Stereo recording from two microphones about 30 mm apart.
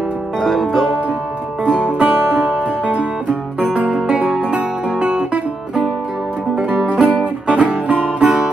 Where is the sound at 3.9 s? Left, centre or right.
Right.